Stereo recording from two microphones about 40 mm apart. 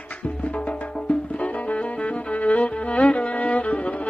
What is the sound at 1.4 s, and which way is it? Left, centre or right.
Music, left.